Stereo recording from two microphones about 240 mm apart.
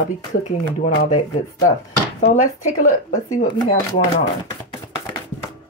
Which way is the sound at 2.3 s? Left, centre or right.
Left.